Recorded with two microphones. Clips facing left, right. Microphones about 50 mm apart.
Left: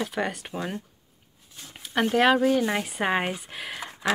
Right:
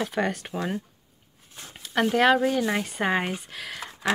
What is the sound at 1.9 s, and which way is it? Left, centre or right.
Speech, centre.